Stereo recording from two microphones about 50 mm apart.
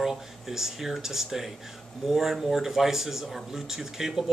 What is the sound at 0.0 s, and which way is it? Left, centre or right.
Speech, centre.